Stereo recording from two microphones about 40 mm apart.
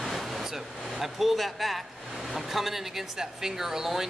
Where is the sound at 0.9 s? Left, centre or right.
Centre.